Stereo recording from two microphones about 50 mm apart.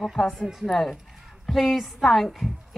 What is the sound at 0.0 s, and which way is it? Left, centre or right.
A woman's voice, centre.